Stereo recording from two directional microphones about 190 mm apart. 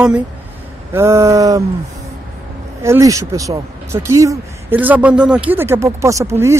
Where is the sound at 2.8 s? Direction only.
15° right (ahead or behind).